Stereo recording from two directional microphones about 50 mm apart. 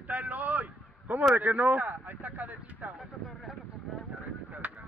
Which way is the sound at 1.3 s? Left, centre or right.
Right.